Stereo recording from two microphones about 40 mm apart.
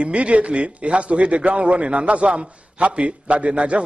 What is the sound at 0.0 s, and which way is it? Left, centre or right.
A man's voice, right.